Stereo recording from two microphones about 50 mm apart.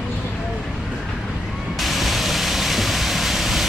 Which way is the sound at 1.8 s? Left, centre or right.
Centre.